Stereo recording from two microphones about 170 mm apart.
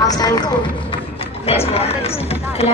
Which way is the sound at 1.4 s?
35° left (ahead or behind).